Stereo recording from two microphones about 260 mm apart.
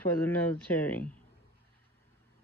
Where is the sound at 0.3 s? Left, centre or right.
Centre.